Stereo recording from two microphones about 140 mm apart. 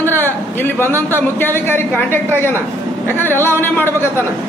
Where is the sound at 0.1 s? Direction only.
15° left (ahead or behind).